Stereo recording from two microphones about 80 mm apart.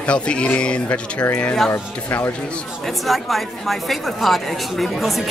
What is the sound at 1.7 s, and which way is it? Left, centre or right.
Speech, left.